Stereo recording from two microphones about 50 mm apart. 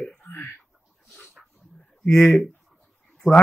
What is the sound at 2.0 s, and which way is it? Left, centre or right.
Speech, left.